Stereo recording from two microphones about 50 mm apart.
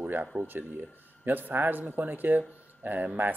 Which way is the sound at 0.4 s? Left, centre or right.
Right.